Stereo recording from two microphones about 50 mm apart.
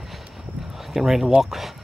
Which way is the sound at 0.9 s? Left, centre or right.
Centre.